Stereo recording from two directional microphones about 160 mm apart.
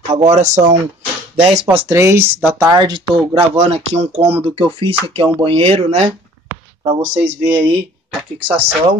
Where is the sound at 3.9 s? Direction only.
40° right (ahead or behind).